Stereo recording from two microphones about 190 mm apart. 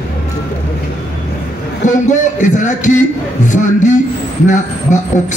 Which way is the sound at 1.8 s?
40° left (ahead or behind).